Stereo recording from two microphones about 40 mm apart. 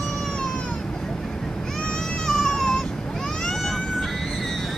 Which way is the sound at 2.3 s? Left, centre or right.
Centre.